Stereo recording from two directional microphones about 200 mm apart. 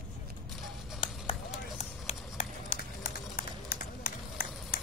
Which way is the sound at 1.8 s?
35° left (ahead or behind).